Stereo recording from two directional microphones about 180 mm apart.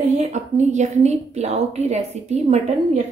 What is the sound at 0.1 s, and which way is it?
A woman's voice, 40° right (ahead or behind).